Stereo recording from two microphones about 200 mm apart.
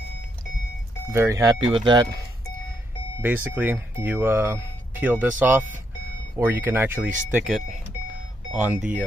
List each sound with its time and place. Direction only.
1.1 s speech: 20° right (ahead or behind)
3.2 s speech: 10° right (ahead or behind)